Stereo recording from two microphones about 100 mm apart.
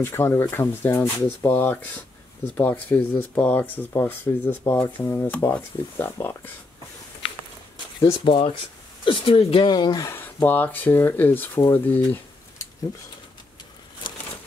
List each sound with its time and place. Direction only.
0.0 s speech: 25° left (ahead or behind)
8.0 s speech: 60° left (ahead or behind)
9.7 s speech: 45° left (ahead or behind)
10.0 s speech: 20° left (ahead or behind)
14.0 s crumpling: 50° left (ahead or behind)